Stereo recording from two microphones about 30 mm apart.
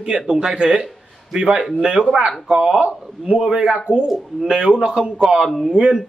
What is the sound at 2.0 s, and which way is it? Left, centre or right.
Speech, right.